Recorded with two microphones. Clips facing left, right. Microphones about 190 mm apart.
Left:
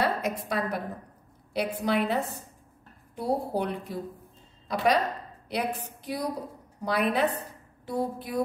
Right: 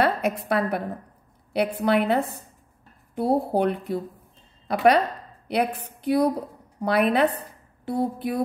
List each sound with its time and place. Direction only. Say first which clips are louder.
0.0 s a woman's voice: right 5 dB; 65° right (ahead or behind)